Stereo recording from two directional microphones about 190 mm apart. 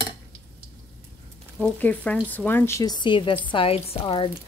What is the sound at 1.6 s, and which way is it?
Speech, 10° left (ahead or behind).